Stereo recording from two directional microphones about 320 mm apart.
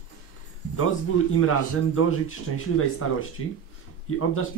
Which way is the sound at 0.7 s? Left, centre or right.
Left.